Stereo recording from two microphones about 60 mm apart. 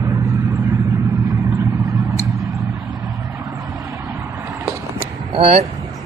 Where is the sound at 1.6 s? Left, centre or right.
Right.